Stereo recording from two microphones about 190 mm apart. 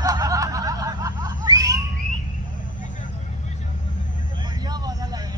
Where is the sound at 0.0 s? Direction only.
20° right (ahead or behind).